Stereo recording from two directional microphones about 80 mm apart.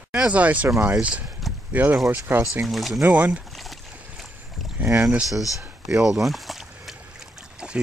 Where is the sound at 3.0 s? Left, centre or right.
Centre.